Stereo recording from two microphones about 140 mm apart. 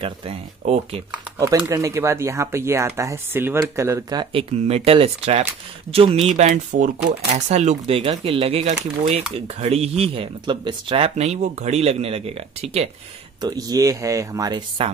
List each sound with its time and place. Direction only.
0.0 s speech: 45° right (ahead or behind)
1.7 s speech: 20° right (ahead or behind); by 12.9 s 50° right (ahead or behind)
13.4 s speech: 30° right (ahead or behind)
14.8 s speech: 45° right (ahead or behind)